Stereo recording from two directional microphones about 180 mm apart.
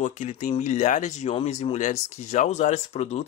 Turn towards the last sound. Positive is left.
turn(degrees=40)  # may be behind; listen again after turning